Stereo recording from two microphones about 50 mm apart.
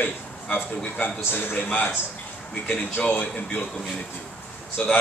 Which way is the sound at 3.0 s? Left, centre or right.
Left.